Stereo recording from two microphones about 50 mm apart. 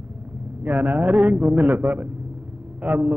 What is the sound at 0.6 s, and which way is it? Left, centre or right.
A man's voice, right.